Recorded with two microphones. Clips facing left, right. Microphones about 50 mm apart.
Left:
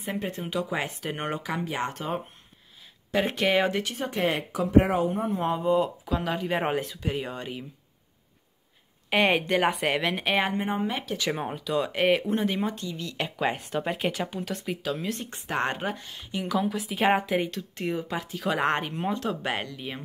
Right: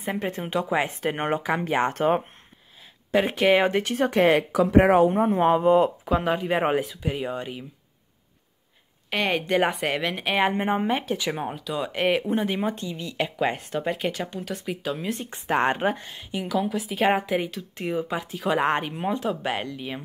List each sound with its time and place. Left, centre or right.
0.0 s speech: right
3.1 s speech: centre
3.9 s speech: right
5.1 s speech: right
6.3 s speech: centre
9.1 s a woman's voice: centre
10.5 s speech: right
11.1 s a woman's voice: centre
12.6 s speech: right
13.2 s a woman's voice: centre
15.3 s a woman's voice: right; by 19.7 s centre